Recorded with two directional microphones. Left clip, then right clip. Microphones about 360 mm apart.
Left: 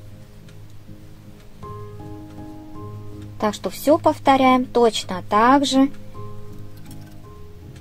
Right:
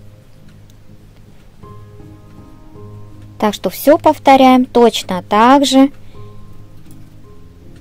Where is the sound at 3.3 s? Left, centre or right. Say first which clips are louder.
Right 7 dB; right.